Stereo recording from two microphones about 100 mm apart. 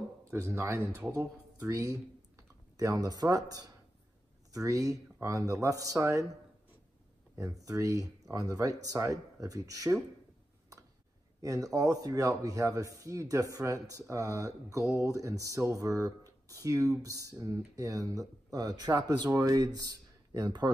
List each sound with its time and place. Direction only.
0.2 s speech: 30° right (ahead or behind)
7.3 s speech: 35° right (ahead or behind)
11.4 s speech: 35° right (ahead or behind)